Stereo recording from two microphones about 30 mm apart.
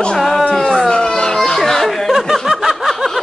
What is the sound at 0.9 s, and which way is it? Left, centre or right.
Children playing, left.